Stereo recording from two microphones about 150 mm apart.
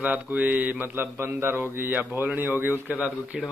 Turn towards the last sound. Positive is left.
turn(degrees=-10)  # may be behind; listen again after turning